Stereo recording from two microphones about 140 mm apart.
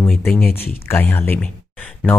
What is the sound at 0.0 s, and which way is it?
Speech, 10° left (ahead or behind).